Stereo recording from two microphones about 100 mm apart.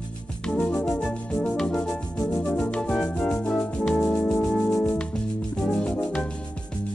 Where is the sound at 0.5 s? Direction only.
10° left (ahead or behind).